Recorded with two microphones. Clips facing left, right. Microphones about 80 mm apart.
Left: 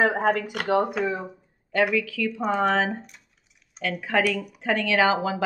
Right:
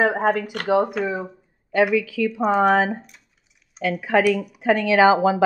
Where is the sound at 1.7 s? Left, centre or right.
Centre.